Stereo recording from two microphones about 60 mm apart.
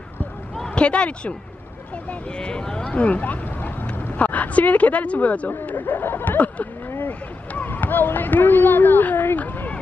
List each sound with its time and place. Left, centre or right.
0.7 s speech: centre
5.7 s snicker: left
6.9 s a sound: left
7.6 s speech: left